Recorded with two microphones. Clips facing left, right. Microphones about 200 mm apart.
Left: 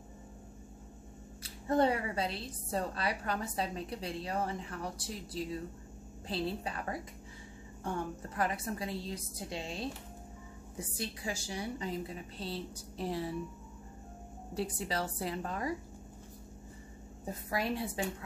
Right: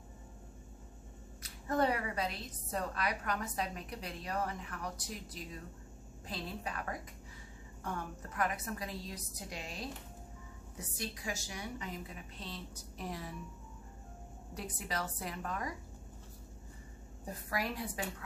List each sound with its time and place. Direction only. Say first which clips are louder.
1.4 s a woman's voice: left 4 dB; 30° left (ahead or behind)
14.5 s a woman's voice: left 5 dB; 30° left (ahead or behind)
17.2 s a woman's voice: left 3 dB; 25° left (ahead or behind)